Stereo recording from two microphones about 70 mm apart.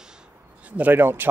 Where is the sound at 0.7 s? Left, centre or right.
Right.